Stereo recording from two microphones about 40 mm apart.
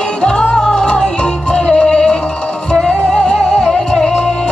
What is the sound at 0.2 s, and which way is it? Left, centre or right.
Music, left.